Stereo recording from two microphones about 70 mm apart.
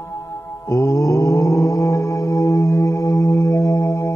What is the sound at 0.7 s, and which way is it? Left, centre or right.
Mantra, left.